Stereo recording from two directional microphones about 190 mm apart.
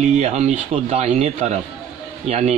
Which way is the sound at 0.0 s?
35° right (ahead or behind).